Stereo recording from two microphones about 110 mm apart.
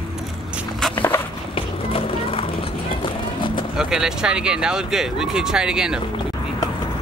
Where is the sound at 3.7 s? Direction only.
5° right (ahead or behind).